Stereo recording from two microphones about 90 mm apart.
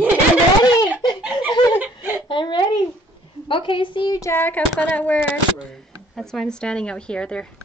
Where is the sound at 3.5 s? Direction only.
70° left (ahead or behind).